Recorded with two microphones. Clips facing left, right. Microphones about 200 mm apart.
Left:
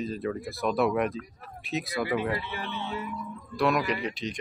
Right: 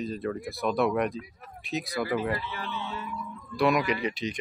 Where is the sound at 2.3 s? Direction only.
20° left (ahead or behind).